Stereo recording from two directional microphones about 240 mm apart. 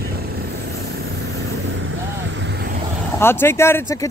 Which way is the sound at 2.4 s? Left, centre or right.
Right.